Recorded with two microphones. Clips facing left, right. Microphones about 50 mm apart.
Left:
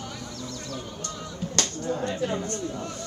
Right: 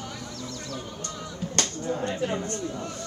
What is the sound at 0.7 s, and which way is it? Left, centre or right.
Speech, right.